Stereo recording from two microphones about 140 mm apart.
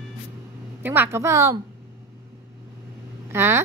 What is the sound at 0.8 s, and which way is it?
Speech, 15° right (ahead or behind).